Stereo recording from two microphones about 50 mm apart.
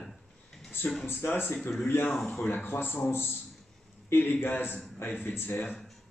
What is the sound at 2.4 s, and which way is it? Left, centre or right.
A man's voice, left.